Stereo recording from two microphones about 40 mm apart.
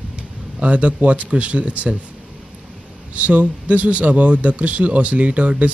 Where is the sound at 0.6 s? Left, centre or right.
Right.